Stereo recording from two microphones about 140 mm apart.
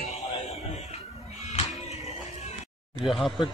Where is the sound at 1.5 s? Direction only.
50° left (ahead or behind).